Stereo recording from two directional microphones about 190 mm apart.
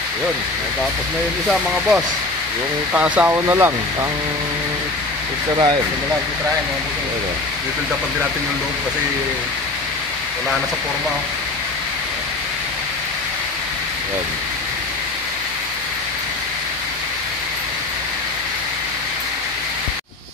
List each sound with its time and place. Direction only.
1.5 s speech: 5° right (ahead or behind)
5.5 s speech: 20° right (ahead or behind)